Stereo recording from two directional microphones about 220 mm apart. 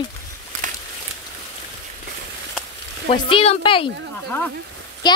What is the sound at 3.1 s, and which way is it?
Speech, 25° left (ahead or behind).